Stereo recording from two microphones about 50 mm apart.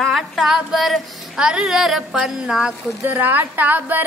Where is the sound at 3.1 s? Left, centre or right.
Right.